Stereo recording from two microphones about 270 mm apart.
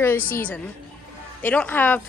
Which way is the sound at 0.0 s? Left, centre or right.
Centre.